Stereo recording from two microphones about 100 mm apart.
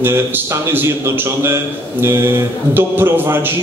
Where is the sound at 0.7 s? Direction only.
25° right (ahead or behind).